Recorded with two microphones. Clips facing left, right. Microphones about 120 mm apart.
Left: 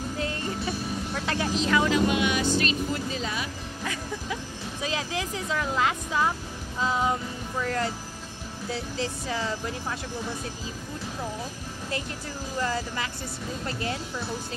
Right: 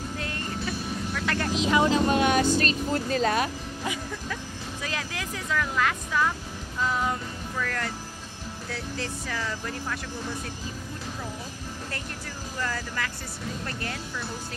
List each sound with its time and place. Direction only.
0.2 s music: 25° left (ahead or behind)
1.4 s speech: centre (ahead or behind)
1.7 s speech: 25° right (ahead or behind); by 3.4 s 50° right (ahead or behind)
4.8 s speech: 20° left (ahead or behind)
8.9 s speech: 20° left (ahead or behind)
12.5 s speech: 20° left (ahead or behind)